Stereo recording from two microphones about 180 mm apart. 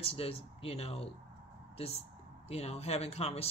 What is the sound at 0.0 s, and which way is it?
Speech, 35° left (ahead or behind).